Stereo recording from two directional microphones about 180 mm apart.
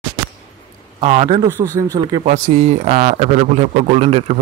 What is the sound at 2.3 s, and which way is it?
A man's voice, 35° right (ahead or behind).